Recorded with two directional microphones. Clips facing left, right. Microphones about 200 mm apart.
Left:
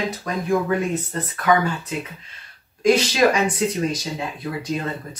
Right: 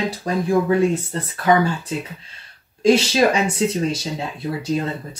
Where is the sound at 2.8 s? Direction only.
25° right (ahead or behind).